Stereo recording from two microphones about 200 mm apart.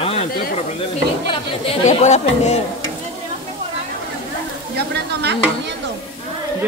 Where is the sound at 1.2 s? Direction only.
30° left (ahead or behind).